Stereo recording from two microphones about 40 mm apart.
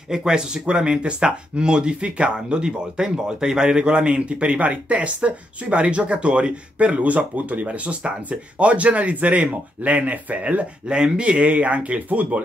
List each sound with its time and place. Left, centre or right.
0.1 s speech: centre; by 12.4 s right